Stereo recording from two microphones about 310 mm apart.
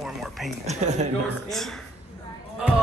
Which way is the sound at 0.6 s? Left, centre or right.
Right.